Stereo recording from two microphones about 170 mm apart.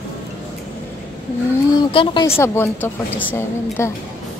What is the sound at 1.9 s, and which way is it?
Speech, 30° left (ahead or behind).